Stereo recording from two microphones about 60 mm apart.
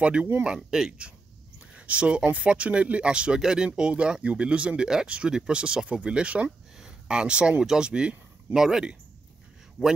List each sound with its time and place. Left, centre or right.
0.0 s speech: centre
0.6 s speech: centre